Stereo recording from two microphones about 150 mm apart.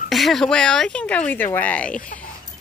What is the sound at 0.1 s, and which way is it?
Speech, centre (ahead or behind).